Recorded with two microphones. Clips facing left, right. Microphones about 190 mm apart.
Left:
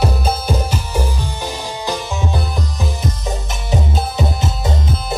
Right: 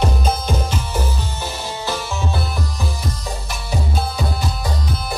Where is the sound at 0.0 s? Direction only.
10° left (ahead or behind).